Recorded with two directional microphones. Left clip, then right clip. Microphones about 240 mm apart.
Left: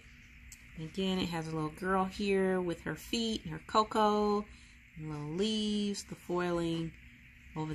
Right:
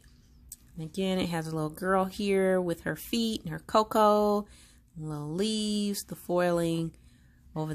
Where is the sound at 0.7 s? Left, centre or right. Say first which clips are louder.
Right 4 dB; right.